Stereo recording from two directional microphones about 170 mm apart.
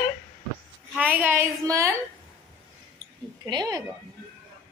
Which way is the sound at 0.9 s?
10° right (ahead or behind).